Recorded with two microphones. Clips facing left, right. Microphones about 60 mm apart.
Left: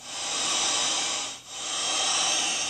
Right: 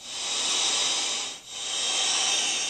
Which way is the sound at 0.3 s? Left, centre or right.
Left.